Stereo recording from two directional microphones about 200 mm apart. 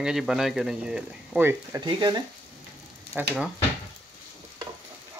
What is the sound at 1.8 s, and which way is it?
Speech, 20° right (ahead or behind).